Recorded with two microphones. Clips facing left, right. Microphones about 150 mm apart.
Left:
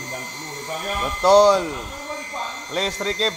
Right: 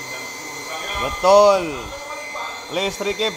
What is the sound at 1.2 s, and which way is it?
Speech, 10° right (ahead or behind).